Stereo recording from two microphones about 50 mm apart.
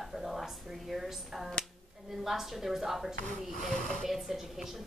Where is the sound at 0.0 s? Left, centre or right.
Centre.